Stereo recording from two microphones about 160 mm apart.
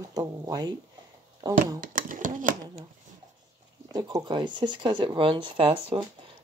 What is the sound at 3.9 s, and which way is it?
Speech, 25° right (ahead or behind).